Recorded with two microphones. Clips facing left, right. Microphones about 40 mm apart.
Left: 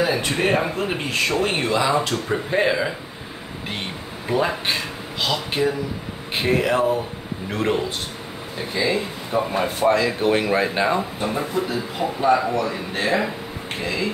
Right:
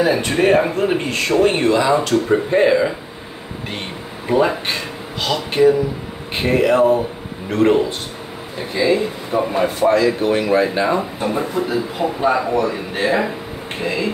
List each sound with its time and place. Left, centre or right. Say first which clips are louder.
0.0 s speech: right 5 dB; centre
4.3 s speech: right 5 dB; centre
9.9 s speech: right 3 dB; centre
11.0 s speech: right 3 dB; centre